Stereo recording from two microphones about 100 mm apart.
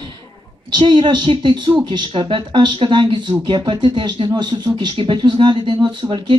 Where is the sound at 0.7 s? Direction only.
50° right (ahead or behind).